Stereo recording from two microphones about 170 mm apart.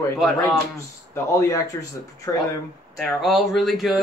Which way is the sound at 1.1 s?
15° left (ahead or behind).